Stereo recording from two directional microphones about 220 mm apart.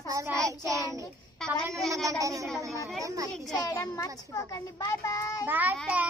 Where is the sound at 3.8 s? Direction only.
15° left (ahead or behind).